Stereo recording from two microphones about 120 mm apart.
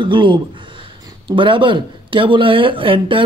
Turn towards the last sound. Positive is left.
turn(degrees=-45)  # may be behind; listen again after turning